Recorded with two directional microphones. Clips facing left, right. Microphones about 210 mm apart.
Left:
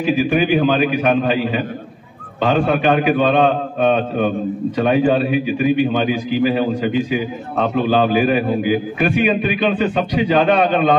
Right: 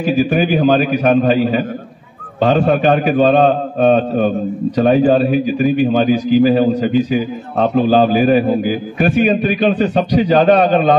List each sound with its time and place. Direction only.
0.0 s a man's voice: 40° right (ahead or behind)